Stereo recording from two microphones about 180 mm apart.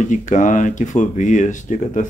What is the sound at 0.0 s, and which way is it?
Speech, 45° left (ahead or behind).